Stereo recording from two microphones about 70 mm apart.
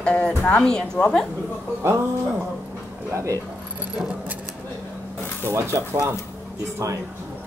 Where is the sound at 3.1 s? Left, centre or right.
Right.